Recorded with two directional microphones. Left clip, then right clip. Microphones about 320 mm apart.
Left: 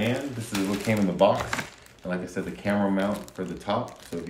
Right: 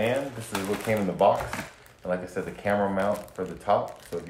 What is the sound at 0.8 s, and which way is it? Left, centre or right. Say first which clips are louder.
Speech: even; centre.